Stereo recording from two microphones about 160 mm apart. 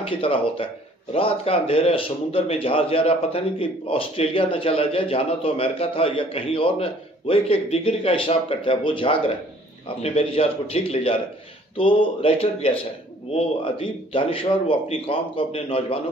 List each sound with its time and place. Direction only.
0.1 s a man's voice: 35° left (ahead or behind)